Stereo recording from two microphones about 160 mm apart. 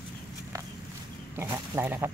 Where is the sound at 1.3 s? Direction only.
15° right (ahead or behind).